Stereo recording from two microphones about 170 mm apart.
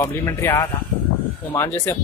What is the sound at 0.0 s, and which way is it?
Speech, 15° left (ahead or behind).